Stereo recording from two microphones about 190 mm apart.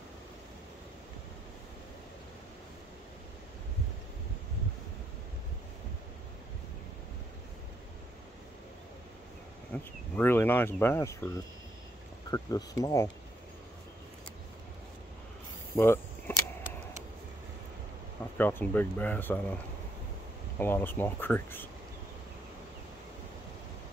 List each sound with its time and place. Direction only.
9.7 s speech: 10° left (ahead or behind)
15.7 s a sound: 15° left (ahead or behind)
18.4 s speech: 10° left (ahead or behind)
20.5 s speech: 10° left (ahead or behind)